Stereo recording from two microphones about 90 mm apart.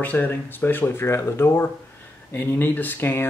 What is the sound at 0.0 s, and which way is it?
Speech, 20° left (ahead or behind).